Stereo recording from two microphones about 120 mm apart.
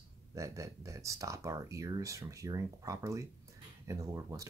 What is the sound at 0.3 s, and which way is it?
Speech, 25° right (ahead or behind).